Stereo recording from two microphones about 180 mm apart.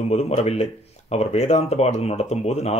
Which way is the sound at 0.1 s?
35° left (ahead or behind).